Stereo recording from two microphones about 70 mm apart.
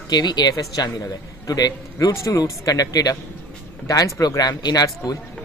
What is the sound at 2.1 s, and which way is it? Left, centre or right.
Speech, left.